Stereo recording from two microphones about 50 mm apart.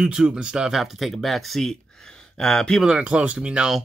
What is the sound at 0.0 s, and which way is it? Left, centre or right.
Speech, centre.